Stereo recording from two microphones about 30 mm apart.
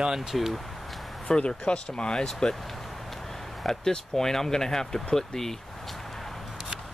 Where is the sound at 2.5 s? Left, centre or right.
Centre.